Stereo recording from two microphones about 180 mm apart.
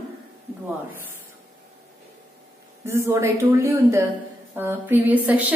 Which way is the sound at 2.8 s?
15° right (ahead or behind).